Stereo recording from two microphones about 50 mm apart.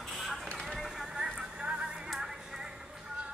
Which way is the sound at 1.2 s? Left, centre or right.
Centre.